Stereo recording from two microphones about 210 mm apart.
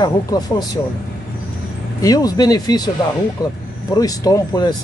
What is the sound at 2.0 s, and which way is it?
Speech, 15° left (ahead or behind).